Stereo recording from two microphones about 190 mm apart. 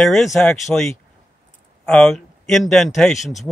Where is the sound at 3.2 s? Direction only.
40° left (ahead or behind).